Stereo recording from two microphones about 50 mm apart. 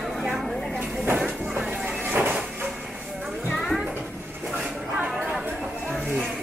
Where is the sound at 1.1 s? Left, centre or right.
Right.